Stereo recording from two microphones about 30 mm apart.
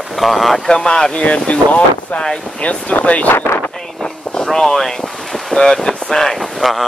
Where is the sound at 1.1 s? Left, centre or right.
Left.